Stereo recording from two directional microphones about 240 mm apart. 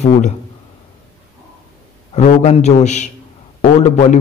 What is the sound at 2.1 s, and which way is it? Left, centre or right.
Speech, left.